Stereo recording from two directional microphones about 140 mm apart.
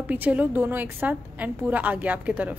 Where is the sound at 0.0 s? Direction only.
10° right (ahead or behind).